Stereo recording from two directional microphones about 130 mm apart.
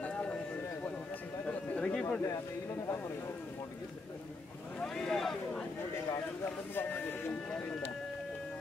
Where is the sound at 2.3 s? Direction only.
20° left (ahead or behind).